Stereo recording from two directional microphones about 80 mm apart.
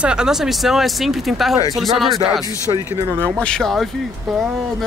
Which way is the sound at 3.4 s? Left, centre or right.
Centre.